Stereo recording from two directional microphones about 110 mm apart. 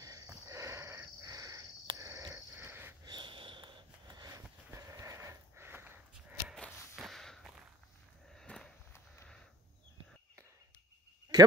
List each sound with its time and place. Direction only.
0.0 s sniff: 30° right (ahead or behind)
3.1 s sniff: 45° right (ahead or behind)
4.7 s horse: 30° right (ahead or behind)
6.5 s a sound: 5° left (ahead or behind)
8.4 s walk: 5° left (ahead or behind)